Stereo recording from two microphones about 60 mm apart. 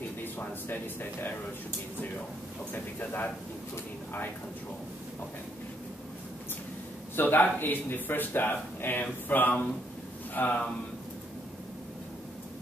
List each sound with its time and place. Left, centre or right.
0.2 s speech: left
2.7 s speech: left
7.2 s speech: left